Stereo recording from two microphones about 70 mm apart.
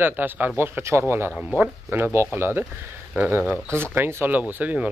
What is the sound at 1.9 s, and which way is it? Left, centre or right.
Speech, right.